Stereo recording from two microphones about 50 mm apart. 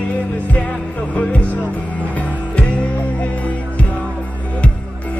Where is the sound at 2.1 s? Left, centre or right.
Left.